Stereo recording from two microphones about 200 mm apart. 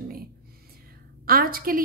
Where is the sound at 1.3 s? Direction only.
45° right (ahead or behind).